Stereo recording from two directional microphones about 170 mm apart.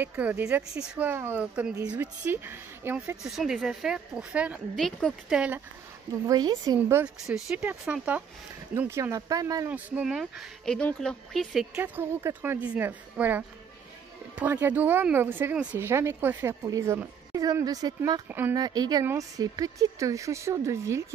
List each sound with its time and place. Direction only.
0.0 s speech: 10° right (ahead or behind)
3.3 s a woman's voice: centre (ahead or behind)
6.2 s speech: 25° right (ahead or behind)
6.8 s speech: 10° right (ahead or behind)
9.7 s speech: 10° right (ahead or behind)